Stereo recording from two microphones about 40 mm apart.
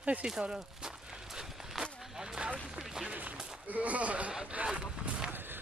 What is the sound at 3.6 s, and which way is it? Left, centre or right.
Speech, right.